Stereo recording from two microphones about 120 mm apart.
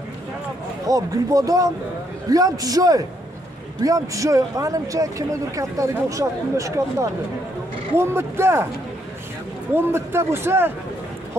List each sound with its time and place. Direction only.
0.8 s a man's voice: 30° right (ahead or behind)
9.8 s speech: 20° right (ahead or behind)